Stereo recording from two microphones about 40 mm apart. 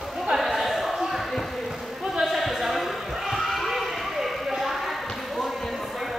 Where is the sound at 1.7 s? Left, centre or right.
Centre.